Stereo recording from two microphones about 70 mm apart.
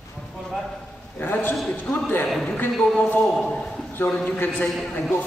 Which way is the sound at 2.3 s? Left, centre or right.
Centre.